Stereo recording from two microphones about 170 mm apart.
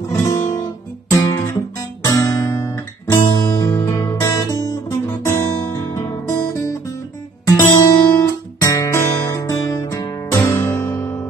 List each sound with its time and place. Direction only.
0.1 s guitar: 15° left (ahead or behind)
7.4 s music: 15° left (ahead or behind)